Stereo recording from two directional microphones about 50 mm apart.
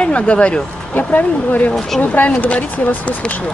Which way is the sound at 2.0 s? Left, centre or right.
Left.